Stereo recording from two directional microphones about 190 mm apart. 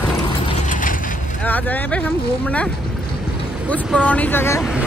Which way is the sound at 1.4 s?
10° left (ahead or behind).